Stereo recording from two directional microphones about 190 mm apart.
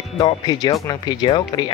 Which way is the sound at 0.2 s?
20° left (ahead or behind).